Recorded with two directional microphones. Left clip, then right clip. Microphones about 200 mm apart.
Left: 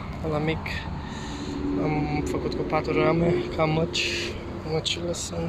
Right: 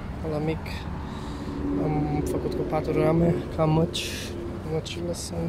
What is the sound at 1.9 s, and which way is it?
Speech, 15° right (ahead or behind).